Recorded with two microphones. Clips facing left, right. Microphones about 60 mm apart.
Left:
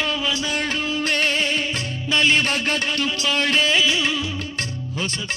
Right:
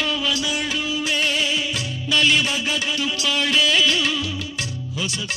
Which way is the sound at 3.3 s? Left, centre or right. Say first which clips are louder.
Even; left.